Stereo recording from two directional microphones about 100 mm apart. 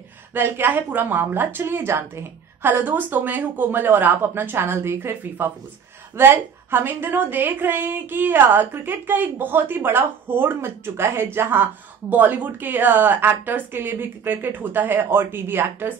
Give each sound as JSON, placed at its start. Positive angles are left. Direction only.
{"t": 0.3, "sound": "a woman's voice", "side_deg": -20}